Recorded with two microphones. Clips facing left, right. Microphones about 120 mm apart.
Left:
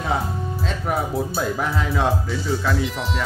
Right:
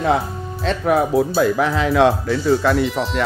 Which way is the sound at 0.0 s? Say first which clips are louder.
Right 5 dB; 70° right (ahead or behind).